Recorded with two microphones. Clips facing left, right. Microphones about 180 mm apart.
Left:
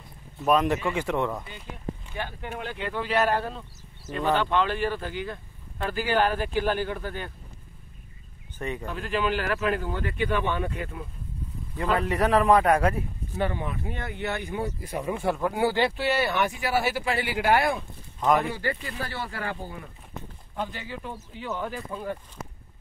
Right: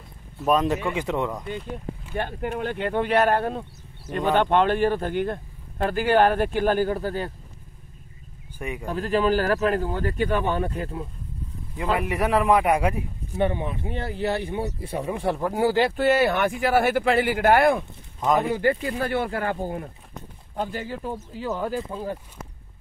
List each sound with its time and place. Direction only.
0.9 s speech: 15° right (ahead or behind)
2.1 s speech: 50° right (ahead or behind)
8.5 s speech: 10° right (ahead or behind)
8.8 s a man's voice: 40° right (ahead or behind)
12.0 s a man's voice: 10° right (ahead or behind); by 21.8 s 40° right (ahead or behind)